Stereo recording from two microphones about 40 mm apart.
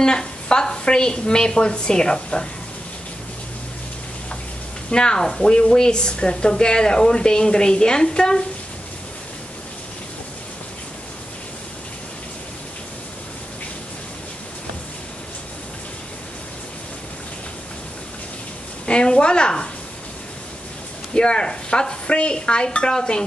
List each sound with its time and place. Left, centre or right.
0.0 s a woman's voice: centre
4.9 s a woman's voice: left
18.9 s a woman's voice: left
21.1 s a woman's voice: left